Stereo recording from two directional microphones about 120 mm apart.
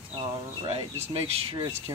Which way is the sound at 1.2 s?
55° right (ahead or behind).